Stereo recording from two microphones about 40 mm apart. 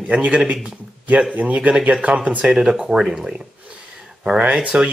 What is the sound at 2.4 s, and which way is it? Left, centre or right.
Speech, centre.